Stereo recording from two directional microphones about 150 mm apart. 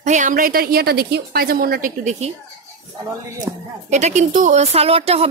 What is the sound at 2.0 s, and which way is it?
Speech, 50° right (ahead or behind).